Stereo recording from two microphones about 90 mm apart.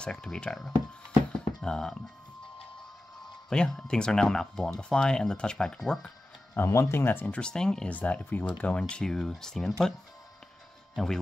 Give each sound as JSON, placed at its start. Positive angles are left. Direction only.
{"t": 0.0, "sound": "speech", "side_deg": 10}
{"t": 3.4, "sound": "speech", "side_deg": 5}
{"t": 6.5, "sound": "speech", "side_deg": 30}
{"t": 7.3, "sound": "speech", "side_deg": 10}